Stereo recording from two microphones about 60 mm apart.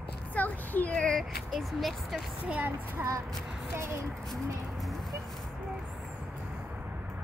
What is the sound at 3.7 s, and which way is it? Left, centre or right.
Speech, right.